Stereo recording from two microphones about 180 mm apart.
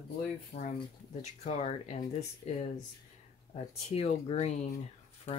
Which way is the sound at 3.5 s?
35° left (ahead or behind).